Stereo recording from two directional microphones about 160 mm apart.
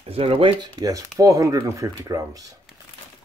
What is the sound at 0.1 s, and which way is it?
Speech, 35° right (ahead or behind).